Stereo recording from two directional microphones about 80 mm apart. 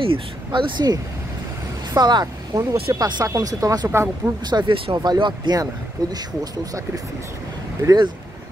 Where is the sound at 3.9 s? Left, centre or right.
Right.